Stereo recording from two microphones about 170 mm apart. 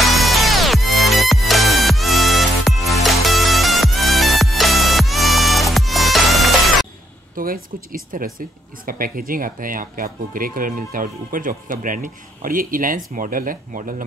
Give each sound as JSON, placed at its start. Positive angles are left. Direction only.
{"t": 0.0, "sound": "music", "side_deg": 0}
{"t": 7.3, "sound": "speech", "side_deg": -55}